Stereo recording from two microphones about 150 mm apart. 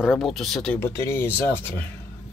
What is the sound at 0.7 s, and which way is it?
Speech, 15° left (ahead or behind).